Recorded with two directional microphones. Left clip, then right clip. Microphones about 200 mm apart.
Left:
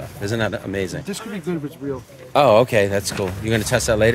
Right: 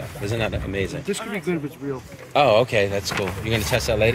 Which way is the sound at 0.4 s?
35° left (ahead or behind).